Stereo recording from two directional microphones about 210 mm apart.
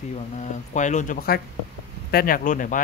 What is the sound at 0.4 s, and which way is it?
Speech, 35° left (ahead or behind).